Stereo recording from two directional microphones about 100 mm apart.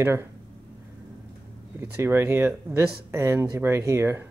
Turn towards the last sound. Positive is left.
turn(degrees=-25)  # may be behind; listen again after turning